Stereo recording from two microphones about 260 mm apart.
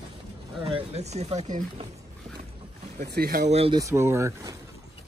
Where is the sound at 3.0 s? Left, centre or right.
Right.